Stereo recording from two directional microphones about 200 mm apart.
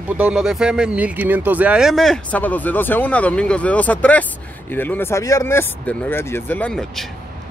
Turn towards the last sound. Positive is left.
turn(degrees=0)  # may be behind; listen again after turning